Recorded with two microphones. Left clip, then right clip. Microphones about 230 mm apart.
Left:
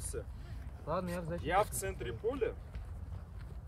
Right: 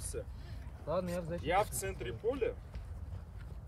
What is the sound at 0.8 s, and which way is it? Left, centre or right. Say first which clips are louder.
Speech: right 1 dB; left.